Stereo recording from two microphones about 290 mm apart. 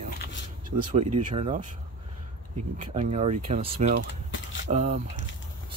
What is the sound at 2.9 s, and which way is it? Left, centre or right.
Speech, right.